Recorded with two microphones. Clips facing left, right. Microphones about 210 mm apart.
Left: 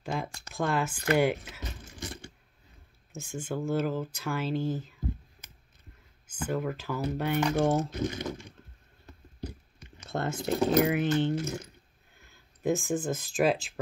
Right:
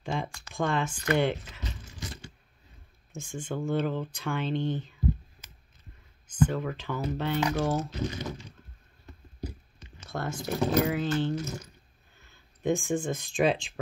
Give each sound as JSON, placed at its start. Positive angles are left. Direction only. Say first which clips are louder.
{"t": 0.0, "sound": "a sound", "louder": "right 1 dB", "side_deg": 5}
{"t": 0.6, "sound": "speech", "louder": "even", "side_deg": 5}
{"t": 1.4, "sound": "a sound", "louder": "even", "side_deg": 50}
{"t": 3.1, "sound": "speech", "louder": "even", "side_deg": 10}
{"t": 6.2, "sound": "speech", "louder": "right 3 dB", "side_deg": 10}
{"t": 7.9, "sound": "speech", "louder": "left 2 dB", "side_deg": 55}
{"t": 10.0, "sound": "speech", "louder": "left 3 dB", "side_deg": 25}
{"t": 12.6, "sound": "speech", "louder": "right 1 dB", "side_deg": 5}